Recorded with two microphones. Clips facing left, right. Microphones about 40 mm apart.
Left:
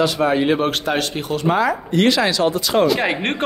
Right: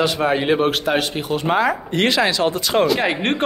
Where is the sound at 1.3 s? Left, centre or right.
Right.